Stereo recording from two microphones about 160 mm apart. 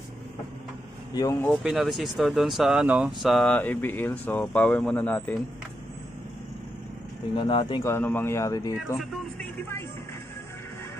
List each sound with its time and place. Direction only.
1.1 s speech: 20° left (ahead or behind)
1.6 s speech: centre (ahead or behind)
7.3 s speech: 30° left (ahead or behind)
7.8 s speech: 15° left (ahead or behind)
8.9 s speech: centre (ahead or behind)